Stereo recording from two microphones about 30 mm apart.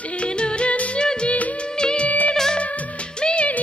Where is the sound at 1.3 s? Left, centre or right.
Left.